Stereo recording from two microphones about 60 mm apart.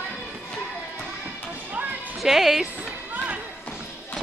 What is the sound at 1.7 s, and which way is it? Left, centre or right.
Music, right.